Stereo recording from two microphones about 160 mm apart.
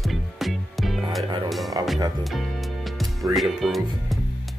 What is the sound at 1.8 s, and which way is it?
Music, 25° right (ahead or behind).